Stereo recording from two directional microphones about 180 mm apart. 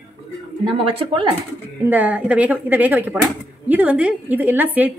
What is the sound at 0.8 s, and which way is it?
Speech, 30° right (ahead or behind).